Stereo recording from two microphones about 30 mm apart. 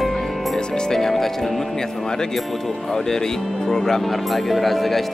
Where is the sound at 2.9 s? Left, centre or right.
Centre.